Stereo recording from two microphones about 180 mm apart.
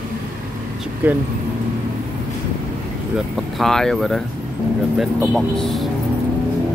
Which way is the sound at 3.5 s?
Centre (ahead or behind).